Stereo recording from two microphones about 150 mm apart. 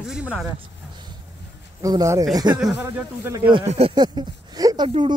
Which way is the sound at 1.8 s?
25° right (ahead or behind).